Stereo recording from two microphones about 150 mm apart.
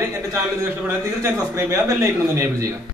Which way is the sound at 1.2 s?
20° right (ahead or behind).